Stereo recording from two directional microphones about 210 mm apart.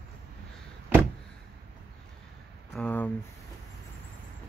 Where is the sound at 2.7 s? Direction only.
5° left (ahead or behind).